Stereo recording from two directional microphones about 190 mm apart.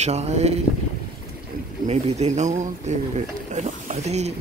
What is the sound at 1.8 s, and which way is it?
Speech, 35° right (ahead or behind).